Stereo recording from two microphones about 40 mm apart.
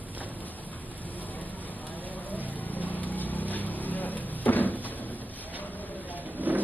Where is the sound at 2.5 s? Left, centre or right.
Left.